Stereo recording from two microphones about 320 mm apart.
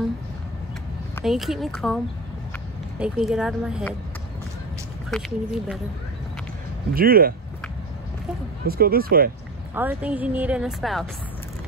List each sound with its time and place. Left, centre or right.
1.1 s a woman's voice: centre
3.0 s a woman's voice: centre
5.1 s a woman's voice: centre
6.9 s speech: right
8.6 s speech: right
9.8 s a woman's voice: centre